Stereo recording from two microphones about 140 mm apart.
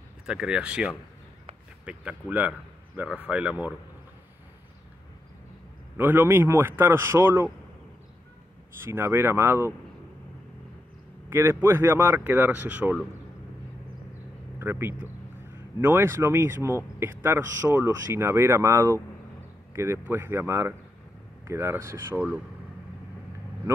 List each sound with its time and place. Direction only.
0.3 s speech: 5° right (ahead or behind)
5.9 s speech: 15° right (ahead or behind)
8.7 s speech: 15° right (ahead or behind)
11.2 s speech: 15° right (ahead or behind)
14.6 s speech: 15° right (ahead or behind)